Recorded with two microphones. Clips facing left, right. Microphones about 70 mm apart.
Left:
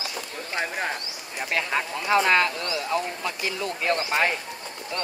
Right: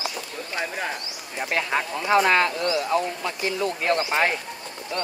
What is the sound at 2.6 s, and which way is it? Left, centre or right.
Speech, centre.